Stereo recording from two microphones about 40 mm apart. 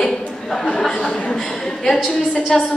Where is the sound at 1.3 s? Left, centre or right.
Centre.